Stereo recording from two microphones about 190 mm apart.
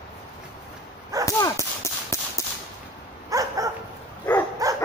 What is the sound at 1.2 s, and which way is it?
Dog, 15° left (ahead or behind).